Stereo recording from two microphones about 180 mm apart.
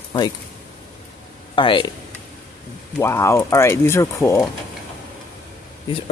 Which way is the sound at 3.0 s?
15° left (ahead or behind).